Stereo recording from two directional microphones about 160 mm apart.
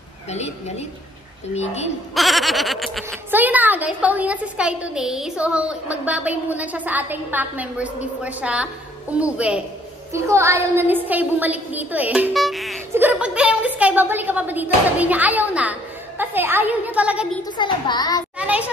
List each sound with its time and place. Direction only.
0.3 s a woman's voice: 45° left (ahead or behind)
2.1 s goat: centre (ahead or behind)
3.3 s a woman's voice: 10° right (ahead or behind)
10.1 s a woman's voice: 15° right (ahead or behind)
17.6 s a child's voice: 30° left (ahead or behind)
18.4 s children playing: 10° right (ahead or behind)